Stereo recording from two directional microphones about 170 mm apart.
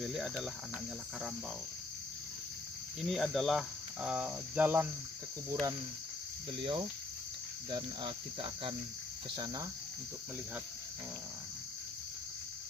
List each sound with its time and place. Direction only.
0.0 s cricket: centre (ahead or behind)
3.0 s cricket: centre (ahead or behind)
6.6 s cricket: 30° right (ahead or behind)